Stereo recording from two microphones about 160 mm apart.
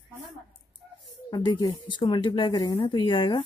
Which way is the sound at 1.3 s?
25° left (ahead or behind).